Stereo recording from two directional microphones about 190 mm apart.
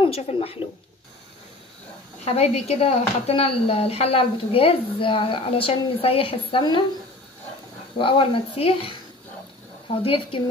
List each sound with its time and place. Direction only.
0.0 s speech: 30° left (ahead or behind)
2.2 s speech: 35° left (ahead or behind)
8.0 s speech: 30° left (ahead or behind)